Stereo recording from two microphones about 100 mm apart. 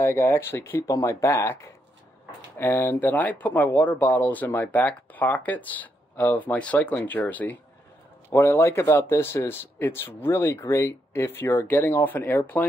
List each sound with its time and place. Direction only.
0.0 s speech: 25° left (ahead or behind)